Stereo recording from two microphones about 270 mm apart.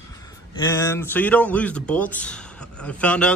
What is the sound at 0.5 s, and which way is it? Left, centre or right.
A man's voice, centre.